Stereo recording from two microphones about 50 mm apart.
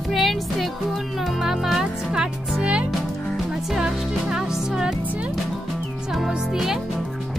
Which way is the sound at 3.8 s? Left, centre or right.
Centre.